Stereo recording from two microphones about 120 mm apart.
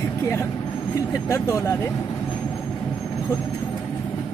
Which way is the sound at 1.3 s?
25° left (ahead or behind).